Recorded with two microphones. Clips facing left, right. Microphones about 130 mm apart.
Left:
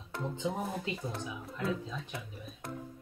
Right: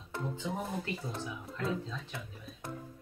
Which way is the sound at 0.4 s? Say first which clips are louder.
Left 3 dB; 25° left (ahead or behind).